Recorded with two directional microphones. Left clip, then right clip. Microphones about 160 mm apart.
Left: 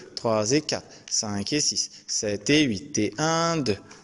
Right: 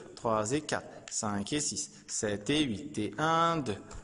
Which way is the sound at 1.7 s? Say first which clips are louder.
Left 11 dB; 20° right (ahead or behind).